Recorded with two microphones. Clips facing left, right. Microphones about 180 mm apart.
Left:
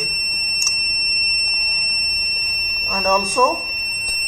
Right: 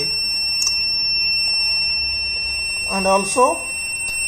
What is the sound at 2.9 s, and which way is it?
Speech, 15° right (ahead or behind).